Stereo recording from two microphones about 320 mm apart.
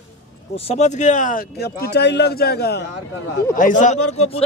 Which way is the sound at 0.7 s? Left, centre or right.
Left.